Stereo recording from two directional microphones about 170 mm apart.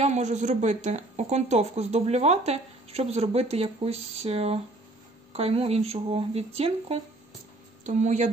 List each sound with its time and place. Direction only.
0.0 s speech: 40° right (ahead or behind)